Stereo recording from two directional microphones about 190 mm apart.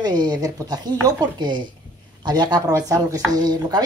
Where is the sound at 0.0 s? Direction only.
20° right (ahead or behind).